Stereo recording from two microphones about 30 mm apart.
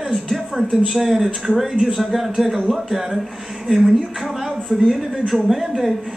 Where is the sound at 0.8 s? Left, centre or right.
Centre.